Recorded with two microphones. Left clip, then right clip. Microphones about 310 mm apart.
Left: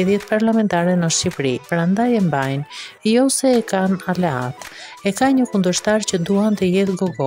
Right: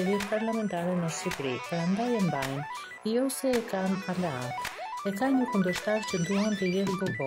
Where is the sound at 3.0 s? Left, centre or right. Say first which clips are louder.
Left 13 dB; left.